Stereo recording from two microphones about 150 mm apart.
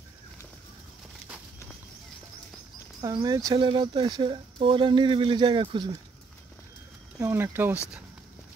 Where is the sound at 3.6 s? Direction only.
35° right (ahead or behind).